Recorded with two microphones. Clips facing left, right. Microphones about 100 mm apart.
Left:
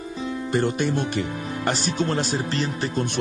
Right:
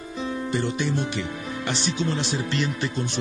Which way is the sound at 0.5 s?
50° left (ahead or behind).